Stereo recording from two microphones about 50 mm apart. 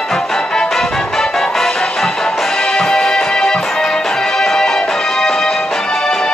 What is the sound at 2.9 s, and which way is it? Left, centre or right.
Music, centre.